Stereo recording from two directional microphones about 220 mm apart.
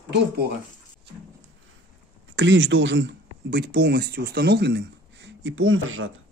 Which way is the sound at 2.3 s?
55° right (ahead or behind).